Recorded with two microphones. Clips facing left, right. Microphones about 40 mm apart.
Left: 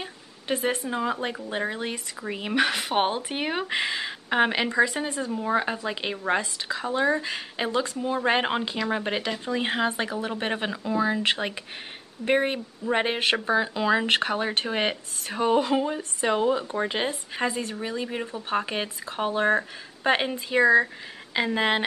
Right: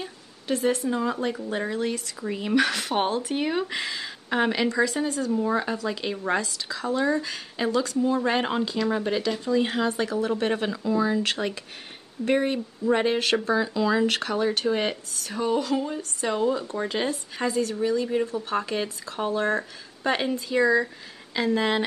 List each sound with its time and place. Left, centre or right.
0.0 s speech: left